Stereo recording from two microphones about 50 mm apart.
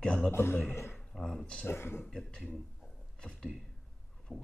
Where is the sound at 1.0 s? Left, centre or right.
Centre.